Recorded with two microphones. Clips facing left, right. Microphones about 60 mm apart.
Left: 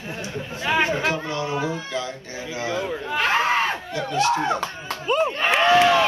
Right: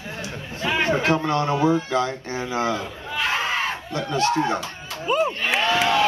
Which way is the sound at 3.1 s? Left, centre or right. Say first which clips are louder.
Left 3 dB; left.